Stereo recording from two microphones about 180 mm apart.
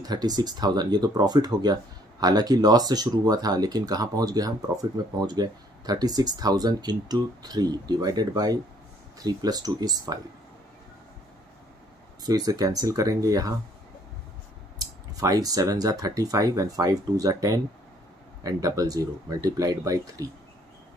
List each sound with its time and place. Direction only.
0.0 s speech: 20° right (ahead or behind)
12.3 s speech: 20° right (ahead or behind)
15.1 s speech: 20° right (ahead or behind)